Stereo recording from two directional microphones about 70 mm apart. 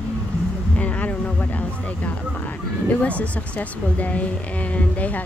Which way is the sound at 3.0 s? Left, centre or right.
Centre.